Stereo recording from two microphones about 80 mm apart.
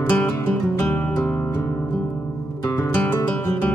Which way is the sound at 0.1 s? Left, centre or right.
Left.